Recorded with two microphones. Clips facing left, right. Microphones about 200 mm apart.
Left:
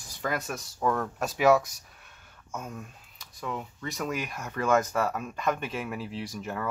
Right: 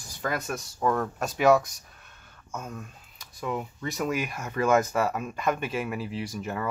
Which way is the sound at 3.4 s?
10° right (ahead or behind).